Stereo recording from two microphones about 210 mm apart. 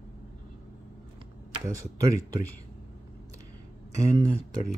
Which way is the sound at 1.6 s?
15° right (ahead or behind).